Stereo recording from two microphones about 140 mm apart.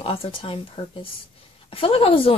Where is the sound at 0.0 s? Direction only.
40° left (ahead or behind).